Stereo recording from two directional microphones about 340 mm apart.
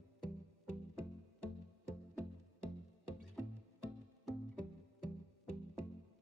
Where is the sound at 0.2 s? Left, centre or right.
Left.